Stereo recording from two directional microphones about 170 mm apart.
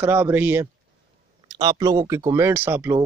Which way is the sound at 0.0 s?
15° right (ahead or behind).